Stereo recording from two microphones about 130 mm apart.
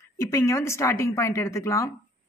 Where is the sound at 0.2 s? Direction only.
25° left (ahead or behind).